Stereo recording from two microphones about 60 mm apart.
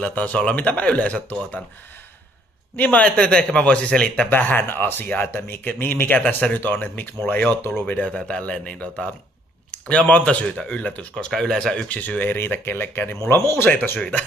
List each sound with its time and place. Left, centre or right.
0.0 s speech: left
2.7 s speech: left
3.1 s speech: centre
4.3 s speech: left
6.2 s speech: centre
6.6 s speech: left; by 11.9 s centre
11.9 s speech: left